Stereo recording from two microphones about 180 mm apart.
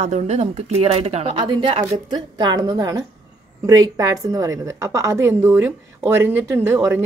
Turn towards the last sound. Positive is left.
turn(degrees=-15)  # may be behind; listen again after turning